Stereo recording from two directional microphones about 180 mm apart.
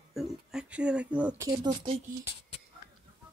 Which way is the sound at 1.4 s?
25° right (ahead or behind).